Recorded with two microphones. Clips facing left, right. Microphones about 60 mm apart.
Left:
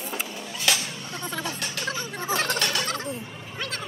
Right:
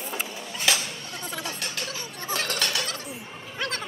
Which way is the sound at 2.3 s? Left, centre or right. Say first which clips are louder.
Left 2 dB; left.